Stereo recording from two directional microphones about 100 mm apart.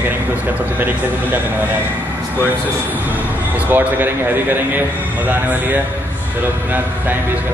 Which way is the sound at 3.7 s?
20° right (ahead or behind).